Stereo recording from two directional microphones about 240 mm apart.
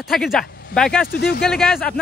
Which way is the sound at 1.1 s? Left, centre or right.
Left.